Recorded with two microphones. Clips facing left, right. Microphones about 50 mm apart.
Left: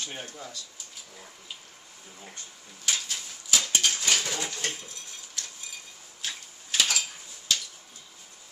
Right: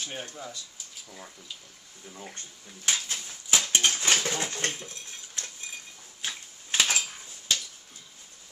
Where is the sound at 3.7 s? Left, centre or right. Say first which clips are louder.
Right 2 dB; right.